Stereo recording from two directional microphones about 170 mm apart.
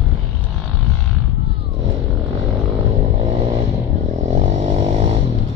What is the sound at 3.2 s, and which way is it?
Vehicle, 40° right (ahead or behind).